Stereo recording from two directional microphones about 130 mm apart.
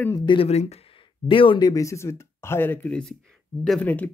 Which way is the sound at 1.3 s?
40° left (ahead or behind).